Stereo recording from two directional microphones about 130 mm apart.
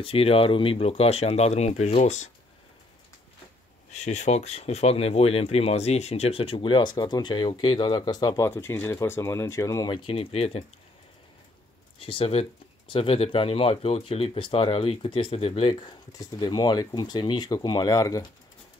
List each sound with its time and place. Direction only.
0.0 s speech: 45° left (ahead or behind)
3.9 s speech: 60° left (ahead or behind); by 8.4 s 35° left (ahead or behind)
8.4 s speech: 20° left (ahead or behind)
9.8 s speech: 40° left (ahead or behind)
12.0 s speech: 45° left (ahead or behind); by 18.2 s 25° left (ahead or behind)